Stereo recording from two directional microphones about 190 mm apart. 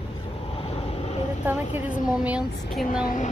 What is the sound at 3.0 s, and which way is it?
Speech, 40° left (ahead or behind).